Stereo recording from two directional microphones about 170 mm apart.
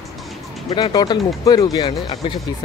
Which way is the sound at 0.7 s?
25° left (ahead or behind).